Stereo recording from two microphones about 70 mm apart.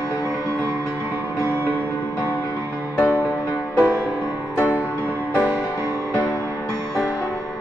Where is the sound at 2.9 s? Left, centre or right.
Left.